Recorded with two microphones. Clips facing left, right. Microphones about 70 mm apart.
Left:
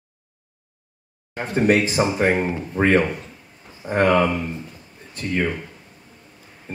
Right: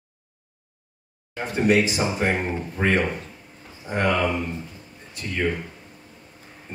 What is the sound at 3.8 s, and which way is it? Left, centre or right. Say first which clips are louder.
Speech: left 5 dB; left.